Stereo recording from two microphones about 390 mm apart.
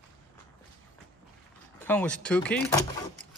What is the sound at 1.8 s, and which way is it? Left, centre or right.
Speech, centre.